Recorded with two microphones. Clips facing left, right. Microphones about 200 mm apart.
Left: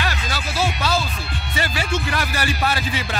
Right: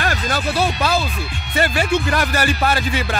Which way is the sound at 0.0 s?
50° right (ahead or behind).